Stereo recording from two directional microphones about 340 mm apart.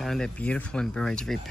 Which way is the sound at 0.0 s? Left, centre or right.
Centre.